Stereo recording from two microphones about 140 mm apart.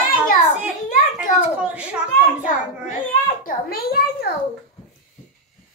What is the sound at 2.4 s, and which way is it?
A child's voice, 75° left (ahead or behind).